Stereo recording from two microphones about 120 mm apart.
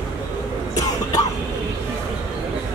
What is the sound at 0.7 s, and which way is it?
Cough, 30° left (ahead or behind).